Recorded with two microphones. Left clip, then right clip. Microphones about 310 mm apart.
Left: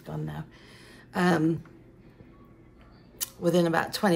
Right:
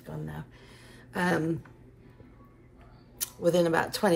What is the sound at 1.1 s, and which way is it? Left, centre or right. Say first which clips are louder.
Speech: left 3 dB; centre.